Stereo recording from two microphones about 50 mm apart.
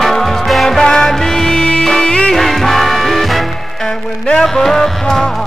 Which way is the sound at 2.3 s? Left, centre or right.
Centre.